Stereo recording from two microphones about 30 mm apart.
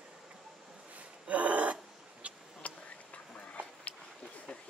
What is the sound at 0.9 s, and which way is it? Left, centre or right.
Gasp, right.